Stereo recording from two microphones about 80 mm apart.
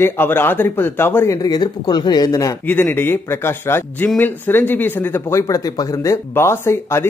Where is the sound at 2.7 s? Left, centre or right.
Left.